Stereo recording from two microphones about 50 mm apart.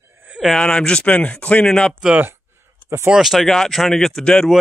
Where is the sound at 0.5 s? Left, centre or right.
Centre.